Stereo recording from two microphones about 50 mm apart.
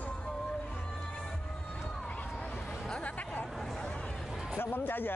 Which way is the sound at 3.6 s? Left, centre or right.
Centre.